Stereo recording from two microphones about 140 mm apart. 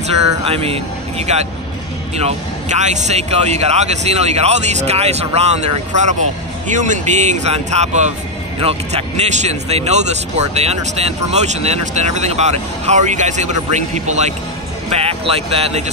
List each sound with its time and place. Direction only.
0.4 s speech: 45° right (ahead or behind)
14.9 s speech: 45° right (ahead or behind)